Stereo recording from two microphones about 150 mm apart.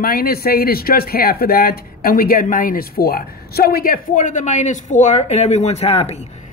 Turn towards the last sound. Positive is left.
turn(degrees=45)  # may be behind; listen again after turning